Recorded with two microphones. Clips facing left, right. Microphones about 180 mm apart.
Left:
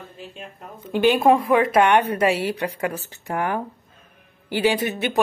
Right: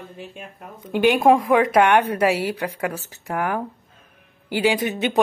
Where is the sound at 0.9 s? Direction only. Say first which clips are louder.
Right 1 dB; 10° right (ahead or behind).